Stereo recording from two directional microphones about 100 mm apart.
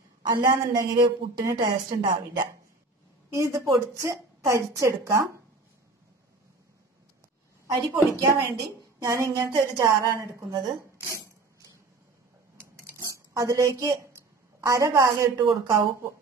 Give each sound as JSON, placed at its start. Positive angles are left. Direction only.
{"t": 0.2, "sound": "a woman's voice", "side_deg": -45}
{"t": 1.4, "sound": "a woman's voice", "side_deg": -30}
{"t": 1.9, "sound": "a woman's voice", "side_deg": -45}
{"t": 3.3, "sound": "a woman's voice", "side_deg": -30}
{"t": 7.9, "sound": "a woman's voice", "side_deg": -30}
{"t": 13.0, "sound": "a woman's voice", "side_deg": -35}
{"t": 14.1, "sound": "a sound", "side_deg": -30}
{"t": 15.3, "sound": "a woman's voice", "side_deg": -35}